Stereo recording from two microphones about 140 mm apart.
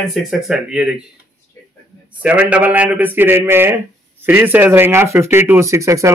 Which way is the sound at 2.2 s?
10° right (ahead or behind).